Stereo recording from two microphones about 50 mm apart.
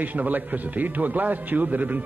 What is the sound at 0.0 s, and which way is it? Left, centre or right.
A man's voice, right.